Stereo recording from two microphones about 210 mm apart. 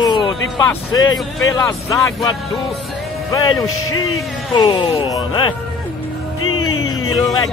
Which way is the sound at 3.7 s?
90° left.